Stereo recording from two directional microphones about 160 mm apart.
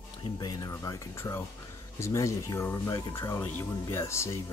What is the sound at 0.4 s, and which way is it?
Speech, 25° left (ahead or behind).